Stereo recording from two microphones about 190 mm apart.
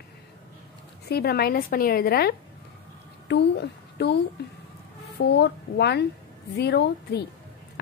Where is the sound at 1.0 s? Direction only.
55° left (ahead or behind).